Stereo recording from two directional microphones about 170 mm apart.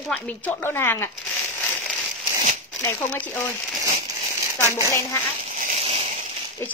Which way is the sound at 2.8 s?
15° left (ahead or behind).